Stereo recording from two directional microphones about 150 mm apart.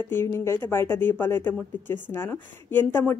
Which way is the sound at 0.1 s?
15° left (ahead or behind).